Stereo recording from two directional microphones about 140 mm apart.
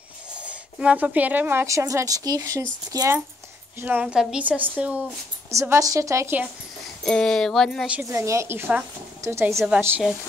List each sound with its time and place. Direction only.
0.4 s a woman's voice: 10° right (ahead or behind); by 3.2 s 25° right (ahead or behind)
3.8 s a woman's voice: 10° right (ahead or behind)
5.5 s a woman's voice: 20° right (ahead or behind)
7.1 s speech: 5° left (ahead or behind)
7.9 s a woman's voice: 20° right (ahead or behind)
9.7 s a woman's voice: 10° right (ahead or behind)